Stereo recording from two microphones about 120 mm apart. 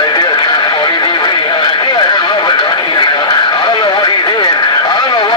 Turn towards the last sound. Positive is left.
turn(degrees=40)  # may be behind; listen again after turning